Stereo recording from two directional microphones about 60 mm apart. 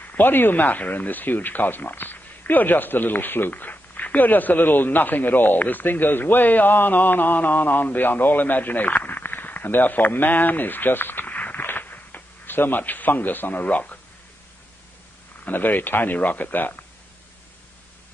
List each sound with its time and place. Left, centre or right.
0.0 s speech: left
15.4 s speech: left